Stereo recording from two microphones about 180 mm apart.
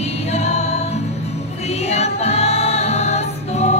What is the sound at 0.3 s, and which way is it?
Music, 40° left (ahead or behind).